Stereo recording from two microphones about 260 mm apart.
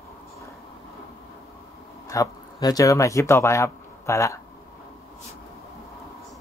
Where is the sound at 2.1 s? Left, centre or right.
Centre.